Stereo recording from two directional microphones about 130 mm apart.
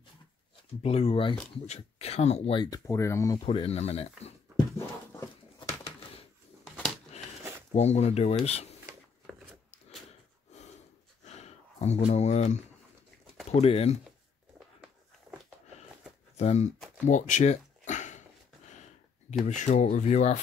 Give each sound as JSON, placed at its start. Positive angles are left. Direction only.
{"t": 0.8, "sound": "speech", "side_deg": 50}
{"t": 1.7, "sound": "speech", "side_deg": 60}
{"t": 2.5, "sound": "speech", "side_deg": 30}
{"t": 3.4, "sound": "speech", "side_deg": 50}
{"t": 7.7, "sound": "speech", "side_deg": 60}
{"t": 11.2, "sound": "a sound", "side_deg": 55}
{"t": 13.5, "sound": "speech", "side_deg": 50}
{"t": 16.3, "sound": "speech", "side_deg": 60}
{"t": 17.0, "sound": "a sound", "side_deg": 70}
{"t": 19.4, "sound": "speech", "side_deg": 65}